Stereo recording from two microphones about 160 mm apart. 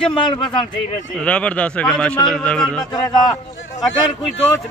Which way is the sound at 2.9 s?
25° left (ahead or behind).